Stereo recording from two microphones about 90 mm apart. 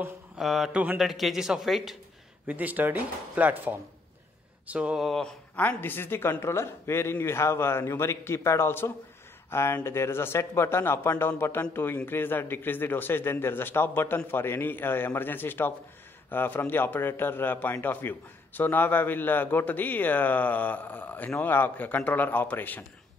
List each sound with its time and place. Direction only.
0.4 s speech: centre (ahead or behind)
2.4 s speech: 20° right (ahead or behind)
5.0 s speech: 5° left (ahead or behind)
5.6 s a man's voice: 20° left (ahead or behind)